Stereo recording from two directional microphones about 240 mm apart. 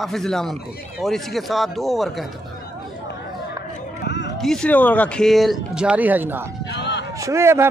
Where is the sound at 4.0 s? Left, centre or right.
Left.